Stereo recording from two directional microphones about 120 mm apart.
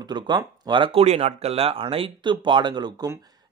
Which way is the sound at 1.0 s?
60° right (ahead or behind).